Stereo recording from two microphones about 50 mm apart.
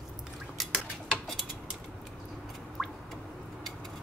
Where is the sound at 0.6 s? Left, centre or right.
Centre.